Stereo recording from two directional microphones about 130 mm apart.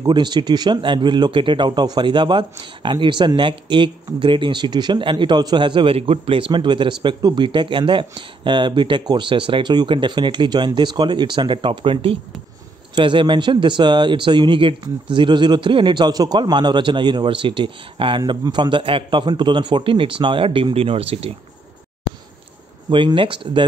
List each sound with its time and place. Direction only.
0.0 s speech: 35° right (ahead or behind); by 21.3 s 50° right (ahead or behind)
22.8 s speech: 40° right (ahead or behind)